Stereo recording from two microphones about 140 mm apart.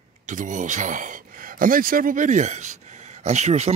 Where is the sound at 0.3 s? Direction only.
65° right (ahead or behind).